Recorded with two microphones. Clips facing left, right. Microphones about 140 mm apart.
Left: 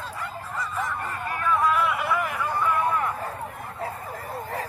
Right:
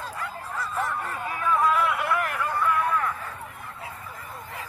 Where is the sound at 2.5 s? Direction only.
20° left (ahead or behind).